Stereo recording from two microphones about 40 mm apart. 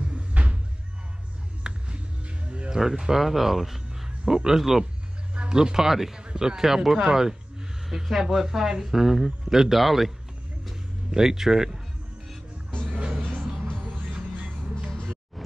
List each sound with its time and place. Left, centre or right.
0.3 s a sound: right
1.6 s music: right
2.7 s speech: centre
5.3 s a man's voice: right